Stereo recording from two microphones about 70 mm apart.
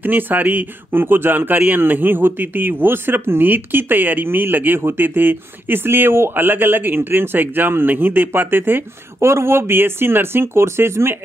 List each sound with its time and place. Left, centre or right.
0.0 s speech: right